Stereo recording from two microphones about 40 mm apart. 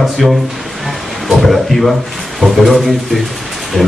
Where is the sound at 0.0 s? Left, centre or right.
Centre.